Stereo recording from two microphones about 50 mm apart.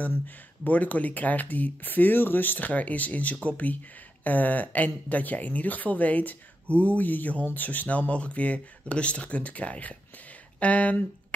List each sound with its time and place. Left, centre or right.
0.7 s speech: left